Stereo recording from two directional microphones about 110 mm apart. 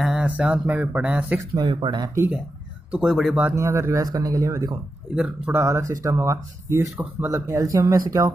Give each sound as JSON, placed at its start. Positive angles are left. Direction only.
{"t": 0.0, "sound": "speech", "side_deg": -10}
{"t": 1.5, "sound": "speech", "side_deg": -40}
{"t": 2.9, "sound": "speech", "side_deg": -5}
{"t": 3.5, "sound": "speech", "side_deg": -30}
{"t": 5.1, "sound": "speech", "side_deg": -10}
{"t": 5.6, "sound": "speech", "side_deg": -25}